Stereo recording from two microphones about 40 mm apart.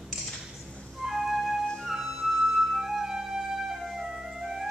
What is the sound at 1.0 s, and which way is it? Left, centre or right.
Music, centre.